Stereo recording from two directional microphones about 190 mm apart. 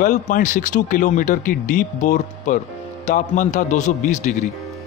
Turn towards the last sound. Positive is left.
turn(degrees=40)  # may be behind; listen again after turning